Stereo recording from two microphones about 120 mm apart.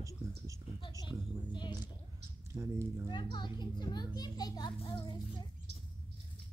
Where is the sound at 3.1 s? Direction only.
40° left (ahead or behind).